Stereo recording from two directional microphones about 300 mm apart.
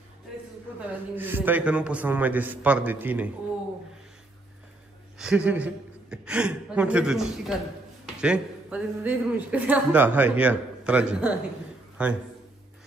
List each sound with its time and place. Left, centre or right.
0.7 s speech: centre
5.2 s a woman's voice: centre